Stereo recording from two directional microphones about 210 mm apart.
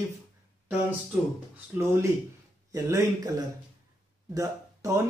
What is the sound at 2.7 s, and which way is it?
A man's voice, 15° right (ahead or behind).